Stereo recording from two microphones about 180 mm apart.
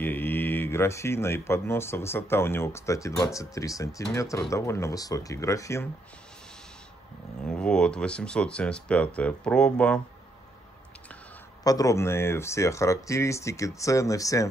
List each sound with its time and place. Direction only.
0.0 s speech: 10° left (ahead or behind)
7.4 s speech: 5° left (ahead or behind)
11.6 s speech: 20° left (ahead or behind)